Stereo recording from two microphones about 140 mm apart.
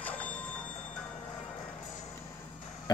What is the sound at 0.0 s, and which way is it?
Train, 10° left (ahead or behind).